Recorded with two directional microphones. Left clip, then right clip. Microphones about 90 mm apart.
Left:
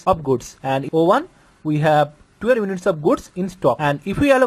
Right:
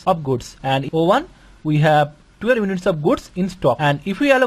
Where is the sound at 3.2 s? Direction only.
20° left (ahead or behind).